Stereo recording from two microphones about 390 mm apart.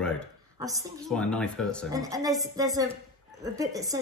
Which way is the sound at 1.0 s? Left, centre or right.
Centre.